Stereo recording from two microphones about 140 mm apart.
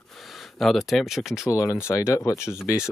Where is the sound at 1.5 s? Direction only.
20° left (ahead or behind).